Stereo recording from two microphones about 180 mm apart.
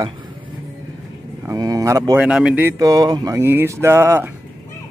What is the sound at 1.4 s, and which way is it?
Speech, 20° right (ahead or behind).